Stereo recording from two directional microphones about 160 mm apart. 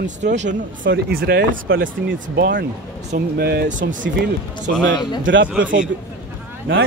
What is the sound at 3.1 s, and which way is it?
Speech, 80° right.